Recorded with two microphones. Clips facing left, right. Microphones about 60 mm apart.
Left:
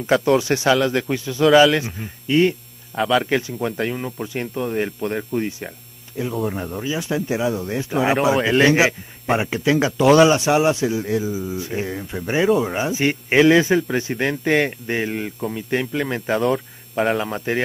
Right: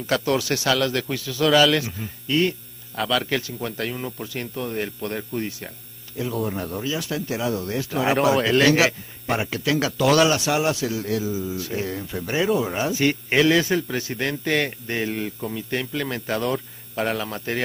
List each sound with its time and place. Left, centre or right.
0.0 s speech: left